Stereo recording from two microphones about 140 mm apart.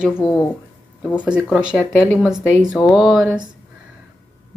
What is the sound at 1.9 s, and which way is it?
Speech, 15° left (ahead or behind).